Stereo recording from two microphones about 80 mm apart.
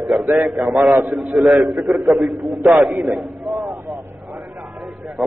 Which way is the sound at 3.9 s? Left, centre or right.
Centre.